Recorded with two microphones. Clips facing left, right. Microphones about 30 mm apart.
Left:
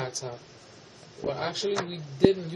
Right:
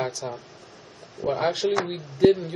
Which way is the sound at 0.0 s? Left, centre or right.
Centre.